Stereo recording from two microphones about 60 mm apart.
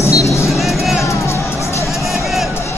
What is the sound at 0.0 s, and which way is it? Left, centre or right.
Music, left.